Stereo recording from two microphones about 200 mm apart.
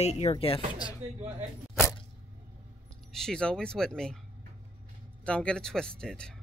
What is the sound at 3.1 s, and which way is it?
Speech, centre (ahead or behind).